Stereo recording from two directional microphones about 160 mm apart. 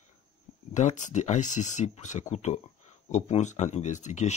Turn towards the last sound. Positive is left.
turn(degrees=50)  # may be behind; listen again after turning